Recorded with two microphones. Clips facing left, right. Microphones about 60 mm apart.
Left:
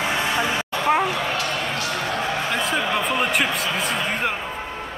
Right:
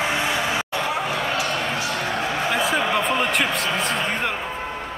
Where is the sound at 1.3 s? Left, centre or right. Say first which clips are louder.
Right 1 dB; centre.